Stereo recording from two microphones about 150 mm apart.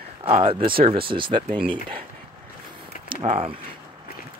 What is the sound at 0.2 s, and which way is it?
Speech, 35° right (ahead or behind).